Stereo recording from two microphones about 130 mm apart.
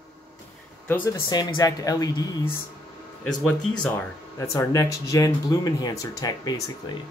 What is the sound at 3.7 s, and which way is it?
Speech, 15° left (ahead or behind).